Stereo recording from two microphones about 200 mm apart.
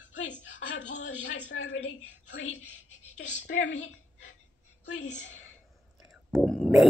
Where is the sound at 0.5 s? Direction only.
65° left (ahead or behind).